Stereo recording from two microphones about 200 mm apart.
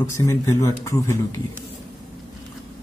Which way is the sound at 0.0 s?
15° left (ahead or behind).